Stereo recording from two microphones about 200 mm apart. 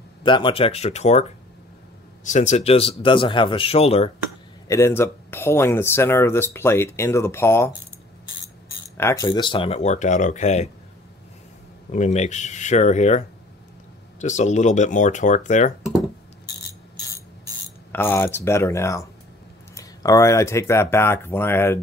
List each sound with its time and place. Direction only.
0.2 s speech: 25° left (ahead or behind)
2.2 s speech: 35° left (ahead or behind)
4.6 s speech: 15° left (ahead or behind)
8.9 s speech: 15° left (ahead or behind); by 10.7 s 35° left (ahead or behind)
11.9 s speech: 35° left (ahead or behind)
14.2 s speech: 35° left (ahead or behind)
17.9 s speech: 10° left (ahead or behind)